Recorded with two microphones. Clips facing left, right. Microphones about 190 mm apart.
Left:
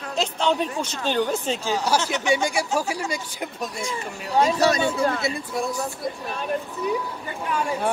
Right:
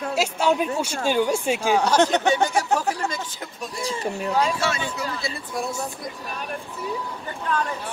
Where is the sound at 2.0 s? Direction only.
60° right (ahead or behind).